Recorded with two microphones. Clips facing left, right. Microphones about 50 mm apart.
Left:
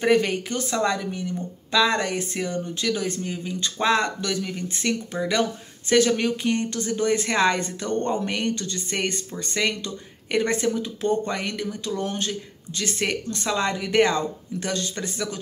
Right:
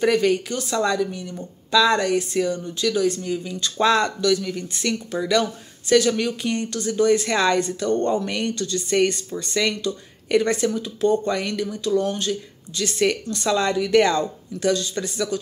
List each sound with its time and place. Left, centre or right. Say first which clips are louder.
0.0 s speech: right 2 dB; left
14.7 s speech: right 6 dB; left